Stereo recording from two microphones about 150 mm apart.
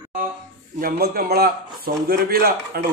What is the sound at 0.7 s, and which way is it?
A man's voice, 80° right.